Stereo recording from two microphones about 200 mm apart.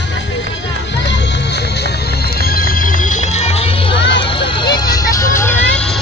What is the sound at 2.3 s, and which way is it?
Music, 50° left (ahead or behind).